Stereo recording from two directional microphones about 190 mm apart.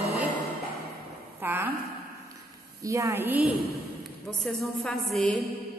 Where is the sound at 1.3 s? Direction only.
10° right (ahead or behind).